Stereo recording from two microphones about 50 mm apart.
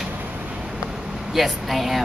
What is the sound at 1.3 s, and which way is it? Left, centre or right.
Speech, centre.